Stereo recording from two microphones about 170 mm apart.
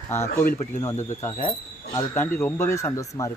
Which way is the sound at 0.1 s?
15° left (ahead or behind).